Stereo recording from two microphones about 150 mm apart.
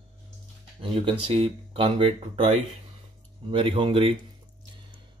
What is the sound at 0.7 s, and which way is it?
Speech, 35° right (ahead or behind).